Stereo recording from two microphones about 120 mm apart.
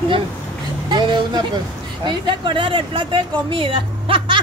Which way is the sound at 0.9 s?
40° right (ahead or behind).